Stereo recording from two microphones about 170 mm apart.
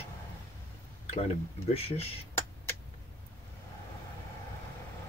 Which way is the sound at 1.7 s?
35° left (ahead or behind).